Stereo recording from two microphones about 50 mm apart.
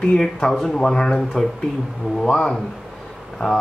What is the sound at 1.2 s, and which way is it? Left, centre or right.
Speech, centre.